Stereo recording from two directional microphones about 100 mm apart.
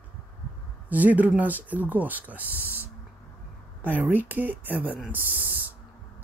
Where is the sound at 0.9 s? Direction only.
15° right (ahead or behind).